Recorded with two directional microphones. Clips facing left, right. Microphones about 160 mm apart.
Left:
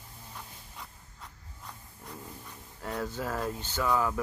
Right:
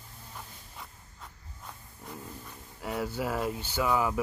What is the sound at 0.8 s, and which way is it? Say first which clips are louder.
Dog: right 1 dB; centre (ahead or behind).